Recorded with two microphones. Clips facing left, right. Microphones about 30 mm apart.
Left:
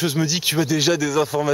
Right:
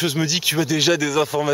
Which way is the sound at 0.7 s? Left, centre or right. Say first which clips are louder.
Right 1 dB; centre.